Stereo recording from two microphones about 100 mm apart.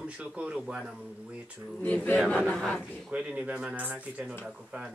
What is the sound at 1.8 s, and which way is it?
Speech, 15° left (ahead or behind).